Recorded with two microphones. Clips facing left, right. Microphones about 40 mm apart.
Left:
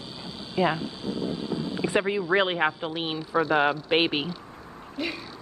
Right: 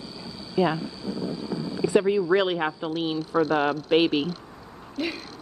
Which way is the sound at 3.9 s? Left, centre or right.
Left.